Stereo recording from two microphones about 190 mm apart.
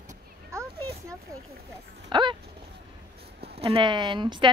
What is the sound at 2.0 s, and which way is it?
Dog, 25° right (ahead or behind).